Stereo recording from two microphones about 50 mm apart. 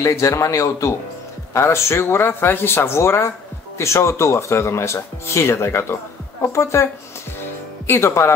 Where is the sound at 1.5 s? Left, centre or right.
Left.